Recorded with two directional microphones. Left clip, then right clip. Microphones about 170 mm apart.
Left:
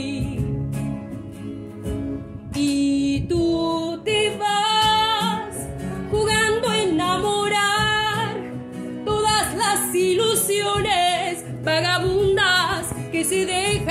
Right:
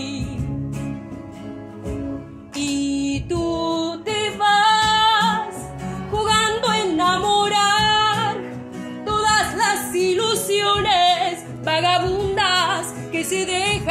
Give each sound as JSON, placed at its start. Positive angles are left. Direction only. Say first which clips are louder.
{"t": 2.5, "sound": "music", "louder": "left 2 dB", "side_deg": 15}